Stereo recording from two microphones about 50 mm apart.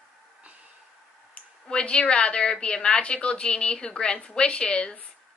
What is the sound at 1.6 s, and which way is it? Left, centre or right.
A woman's voice, left.